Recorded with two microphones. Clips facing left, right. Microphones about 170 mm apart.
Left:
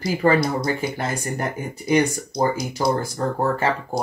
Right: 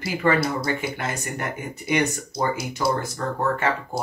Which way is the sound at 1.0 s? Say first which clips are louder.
Left 3 dB; 35° left (ahead or behind).